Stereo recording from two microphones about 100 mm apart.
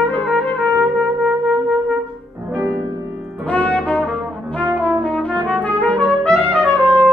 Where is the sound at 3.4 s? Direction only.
15° left (ahead or behind).